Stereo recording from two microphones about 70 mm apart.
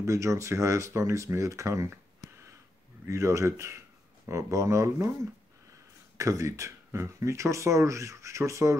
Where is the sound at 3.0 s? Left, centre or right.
Right.